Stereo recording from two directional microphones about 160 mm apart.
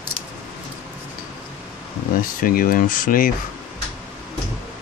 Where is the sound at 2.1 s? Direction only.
60° left (ahead or behind).